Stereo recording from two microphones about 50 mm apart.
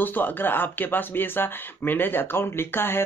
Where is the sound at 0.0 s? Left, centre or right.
Left.